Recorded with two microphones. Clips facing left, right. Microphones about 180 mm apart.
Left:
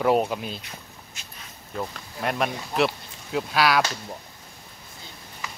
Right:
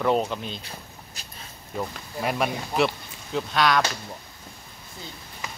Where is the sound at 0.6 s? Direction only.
30° right (ahead or behind).